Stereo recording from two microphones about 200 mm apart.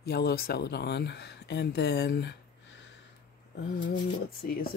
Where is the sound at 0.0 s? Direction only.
55° left (ahead or behind).